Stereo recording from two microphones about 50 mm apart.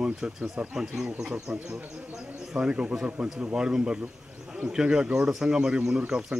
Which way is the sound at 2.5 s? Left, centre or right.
Right.